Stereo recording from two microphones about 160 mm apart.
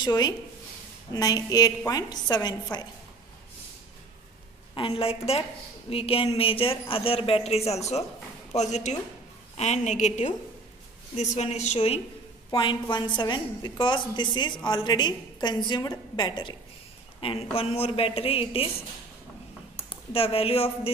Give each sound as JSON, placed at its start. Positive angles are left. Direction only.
{"t": 0.0, "sound": "a woman's voice", "side_deg": 25}
{"t": 4.7, "sound": "a woman's voice", "side_deg": 35}
{"t": 12.4, "sound": "a woman's voice", "side_deg": 25}
{"t": 20.1, "sound": "speech", "side_deg": 35}